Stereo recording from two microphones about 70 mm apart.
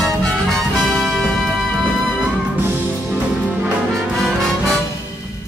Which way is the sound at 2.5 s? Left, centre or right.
Right.